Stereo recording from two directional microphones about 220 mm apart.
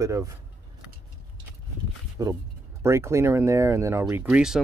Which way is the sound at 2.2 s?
15° right (ahead or behind).